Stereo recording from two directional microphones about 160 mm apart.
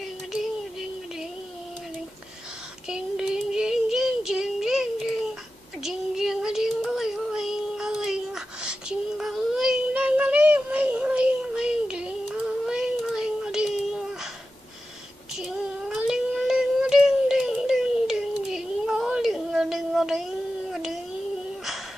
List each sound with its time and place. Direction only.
0.3 s a sound: centre (ahead or behind)
2.9 s female singing: 5° right (ahead or behind)
5.8 s child singing: centre (ahead or behind)
15.3 s child singing: 5° right (ahead or behind)